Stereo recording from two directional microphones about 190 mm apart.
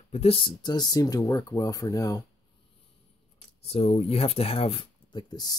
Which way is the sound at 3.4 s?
30° left (ahead or behind).